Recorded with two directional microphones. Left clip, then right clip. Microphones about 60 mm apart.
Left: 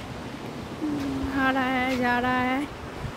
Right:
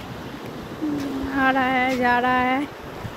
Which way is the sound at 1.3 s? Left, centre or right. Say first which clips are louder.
Right 5 dB; centre.